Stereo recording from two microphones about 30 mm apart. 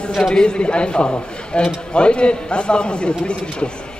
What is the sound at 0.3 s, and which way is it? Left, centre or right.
A man's voice, left.